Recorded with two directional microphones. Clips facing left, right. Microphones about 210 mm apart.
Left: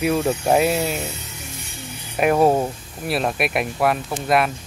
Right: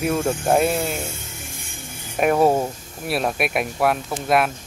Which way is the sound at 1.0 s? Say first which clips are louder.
Left 1 dB; 50° right (ahead or behind).